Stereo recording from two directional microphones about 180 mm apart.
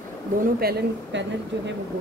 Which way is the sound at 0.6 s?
60° right (ahead or behind).